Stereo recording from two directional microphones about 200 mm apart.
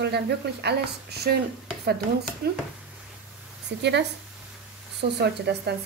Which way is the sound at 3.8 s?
60° right (ahead or behind).